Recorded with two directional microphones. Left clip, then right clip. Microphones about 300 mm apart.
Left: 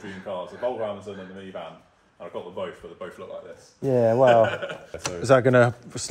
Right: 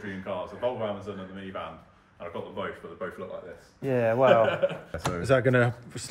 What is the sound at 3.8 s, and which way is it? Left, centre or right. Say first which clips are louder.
Speech: left 4 dB; left.